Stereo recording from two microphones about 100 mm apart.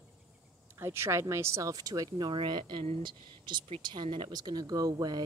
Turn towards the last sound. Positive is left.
turn(degrees=-40)  # may be behind; listen again after turning